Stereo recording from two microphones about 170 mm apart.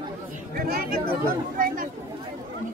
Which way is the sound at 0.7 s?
60° right (ahead or behind).